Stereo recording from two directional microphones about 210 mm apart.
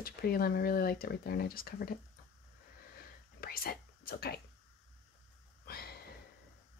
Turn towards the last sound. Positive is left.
turn(degrees=45)  # may be behind; listen again after turning